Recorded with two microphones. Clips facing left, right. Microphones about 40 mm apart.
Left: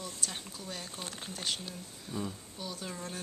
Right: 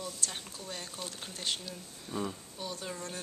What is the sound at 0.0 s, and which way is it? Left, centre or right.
A woman's voice, centre.